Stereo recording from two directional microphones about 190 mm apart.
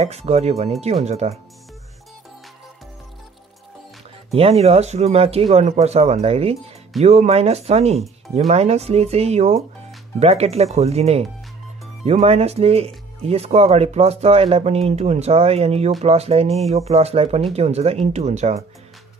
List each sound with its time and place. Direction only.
0.0 s speech: 35° right (ahead or behind)
4.3 s speech: 30° right (ahead or behind)